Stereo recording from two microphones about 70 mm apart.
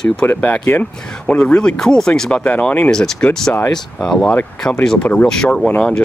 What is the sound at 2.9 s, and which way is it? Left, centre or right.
Speech, centre.